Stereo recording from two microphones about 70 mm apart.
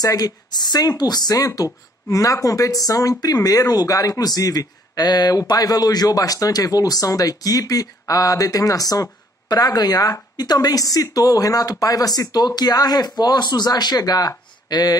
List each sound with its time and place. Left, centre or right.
0.0 s speech: left
5.5 s speech: left
13.2 s speech: left